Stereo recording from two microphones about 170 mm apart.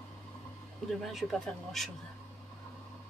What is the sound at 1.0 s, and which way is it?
Speech, centre (ahead or behind).